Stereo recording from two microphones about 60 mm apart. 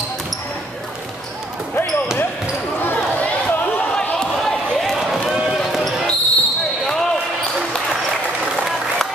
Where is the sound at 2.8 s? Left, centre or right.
Left.